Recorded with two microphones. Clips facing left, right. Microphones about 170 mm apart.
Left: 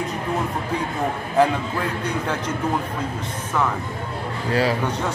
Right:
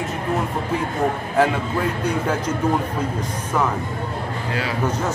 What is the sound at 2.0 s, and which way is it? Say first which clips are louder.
Speech: right 3 dB; 10° right (ahead or behind).